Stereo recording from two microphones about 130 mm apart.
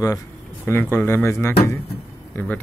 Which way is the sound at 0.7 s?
15° left (ahead or behind).